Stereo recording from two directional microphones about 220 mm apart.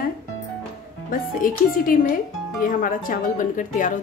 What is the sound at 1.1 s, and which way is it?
Speech, 40° left (ahead or behind).